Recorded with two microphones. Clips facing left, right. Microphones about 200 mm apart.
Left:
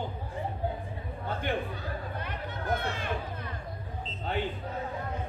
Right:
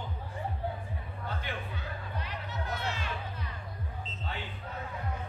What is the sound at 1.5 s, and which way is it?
Speech, 35° left (ahead or behind).